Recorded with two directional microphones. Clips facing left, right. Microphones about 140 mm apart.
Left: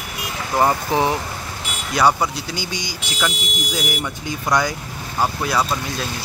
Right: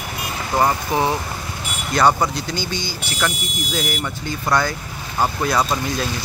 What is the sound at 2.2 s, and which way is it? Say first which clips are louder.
Speech: right 2 dB; 10° left (ahead or behind).